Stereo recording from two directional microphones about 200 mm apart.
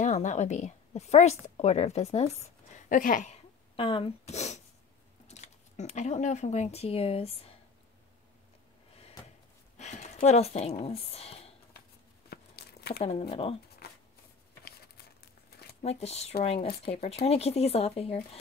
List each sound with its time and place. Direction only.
0.0 s a woman's voice: 35° left (ahead or behind)
3.7 s speech: 25° left (ahead or behind)
9.2 s a sound: 20° left (ahead or behind)
9.8 s a sound: 35° left (ahead or behind)
10.8 s speech: 30° left (ahead or behind)
12.3 s a sound: 55° left (ahead or behind)
13.3 s speech: 30° left (ahead or behind)
13.8 s shuffling cards: 55° left (ahead or behind)
15.8 s speech: 30° left (ahead or behind)